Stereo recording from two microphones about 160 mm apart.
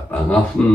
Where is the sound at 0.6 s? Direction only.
5° left (ahead or behind).